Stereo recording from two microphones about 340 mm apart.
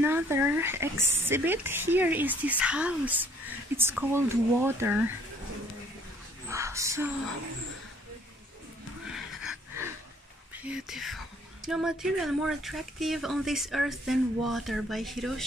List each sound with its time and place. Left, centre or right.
0.0 s speech: centre
6.5 s speech: centre
9.1 s a sound: centre
10.6 s speech: centre